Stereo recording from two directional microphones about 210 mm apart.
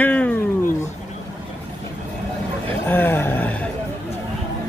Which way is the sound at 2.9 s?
10° left (ahead or behind).